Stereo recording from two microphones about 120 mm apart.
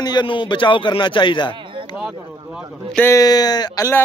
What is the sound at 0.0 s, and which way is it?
A man's voice, 40° left (ahead or behind).